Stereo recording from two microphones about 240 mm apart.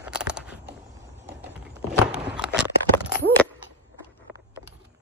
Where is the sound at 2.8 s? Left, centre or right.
Centre.